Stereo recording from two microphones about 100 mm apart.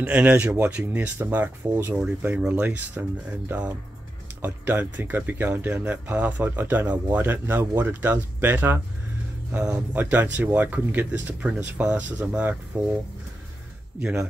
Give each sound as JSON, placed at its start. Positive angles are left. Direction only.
{"t": 0.0, "sound": "speech", "side_deg": -15}